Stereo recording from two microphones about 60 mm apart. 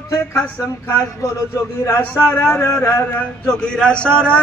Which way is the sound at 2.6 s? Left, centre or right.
Left.